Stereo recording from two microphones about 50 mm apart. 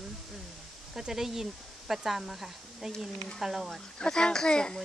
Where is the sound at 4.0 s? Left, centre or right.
Centre.